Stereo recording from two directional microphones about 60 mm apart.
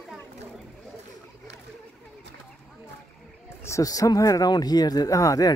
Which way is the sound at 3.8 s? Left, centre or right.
Left.